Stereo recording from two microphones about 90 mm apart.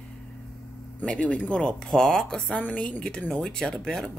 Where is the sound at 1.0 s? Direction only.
10° left (ahead or behind).